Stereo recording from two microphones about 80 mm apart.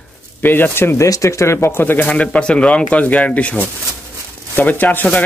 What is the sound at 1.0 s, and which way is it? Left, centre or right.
Speech, left.